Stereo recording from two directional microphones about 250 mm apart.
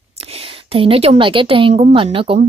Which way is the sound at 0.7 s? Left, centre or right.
Right.